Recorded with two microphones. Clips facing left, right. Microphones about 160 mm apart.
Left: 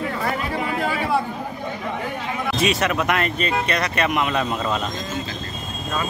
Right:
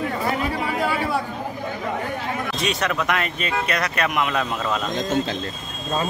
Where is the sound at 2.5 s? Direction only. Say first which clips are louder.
Left 5 dB; 5° left (ahead or behind).